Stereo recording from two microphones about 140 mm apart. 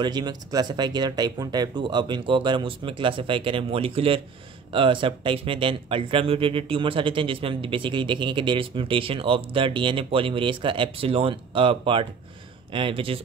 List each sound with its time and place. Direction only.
0.0 s speech: 30° right (ahead or behind)